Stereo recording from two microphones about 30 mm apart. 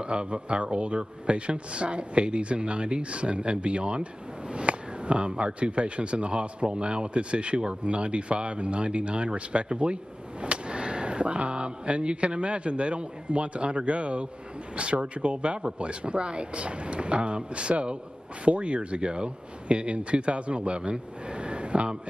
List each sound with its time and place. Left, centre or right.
0.0 s speech: right